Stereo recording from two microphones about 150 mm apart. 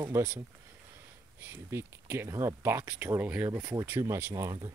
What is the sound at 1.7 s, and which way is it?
Speech, 15° right (ahead or behind).